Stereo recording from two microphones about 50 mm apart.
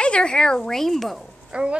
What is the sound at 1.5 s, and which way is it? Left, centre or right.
Speech, centre.